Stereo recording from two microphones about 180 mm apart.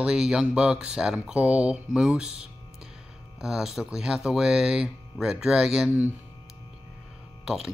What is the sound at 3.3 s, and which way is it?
Speech, centre (ahead or behind).